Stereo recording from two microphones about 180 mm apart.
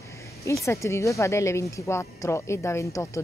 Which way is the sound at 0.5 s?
15° left (ahead or behind).